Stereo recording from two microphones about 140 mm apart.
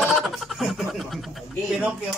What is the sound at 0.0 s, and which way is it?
Speech, centre (ahead or behind).